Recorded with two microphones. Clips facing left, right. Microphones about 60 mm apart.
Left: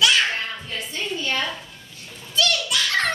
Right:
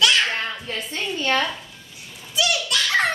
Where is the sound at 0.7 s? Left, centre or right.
Right.